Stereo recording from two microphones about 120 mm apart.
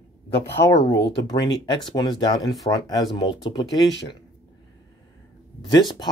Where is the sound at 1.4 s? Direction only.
40° left (ahead or behind).